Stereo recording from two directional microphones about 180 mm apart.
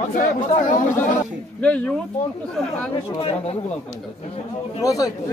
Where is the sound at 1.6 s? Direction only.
5° left (ahead or behind).